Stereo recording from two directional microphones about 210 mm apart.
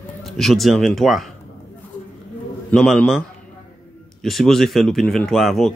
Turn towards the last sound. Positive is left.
turn(degrees=0)  # may be behind; listen again after turning